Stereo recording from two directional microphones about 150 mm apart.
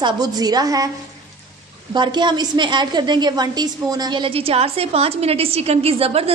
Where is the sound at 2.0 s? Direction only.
30° right (ahead or behind).